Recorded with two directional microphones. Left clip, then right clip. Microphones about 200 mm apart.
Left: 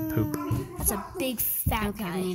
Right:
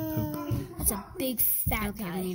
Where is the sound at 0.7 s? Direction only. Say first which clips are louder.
Left 3 dB; 15° right (ahead or behind).